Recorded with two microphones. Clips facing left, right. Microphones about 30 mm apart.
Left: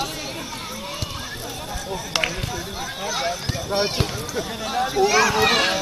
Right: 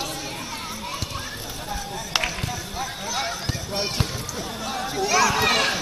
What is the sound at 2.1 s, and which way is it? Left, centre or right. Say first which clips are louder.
Speech: left 1 dB; centre.